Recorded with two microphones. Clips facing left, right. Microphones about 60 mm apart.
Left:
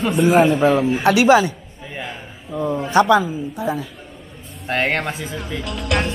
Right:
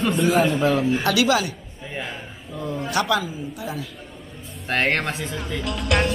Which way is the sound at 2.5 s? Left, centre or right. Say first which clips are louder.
Left 8 dB; left.